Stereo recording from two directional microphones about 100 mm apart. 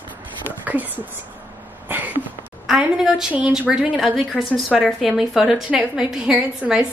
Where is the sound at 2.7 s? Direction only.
5° right (ahead or behind).